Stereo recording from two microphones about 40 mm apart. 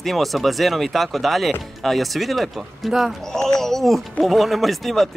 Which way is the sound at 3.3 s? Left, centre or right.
Centre.